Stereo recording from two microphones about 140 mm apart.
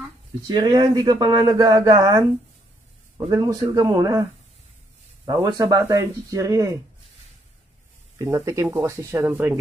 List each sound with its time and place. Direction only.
0.5 s speech: 30° right (ahead or behind)
8.2 s speech: 20° right (ahead or behind)